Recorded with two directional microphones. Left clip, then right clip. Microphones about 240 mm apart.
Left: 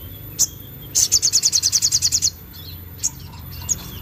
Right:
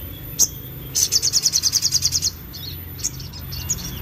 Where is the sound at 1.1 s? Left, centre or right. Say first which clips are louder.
Left 1 dB; centre.